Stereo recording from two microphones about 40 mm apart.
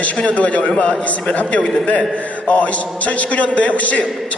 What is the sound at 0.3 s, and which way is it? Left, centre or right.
A woman's voice, left.